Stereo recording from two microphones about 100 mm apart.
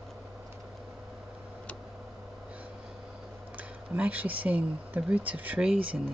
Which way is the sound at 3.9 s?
15° right (ahead or behind).